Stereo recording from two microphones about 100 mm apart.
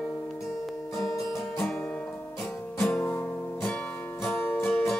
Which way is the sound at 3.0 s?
20° left (ahead or behind).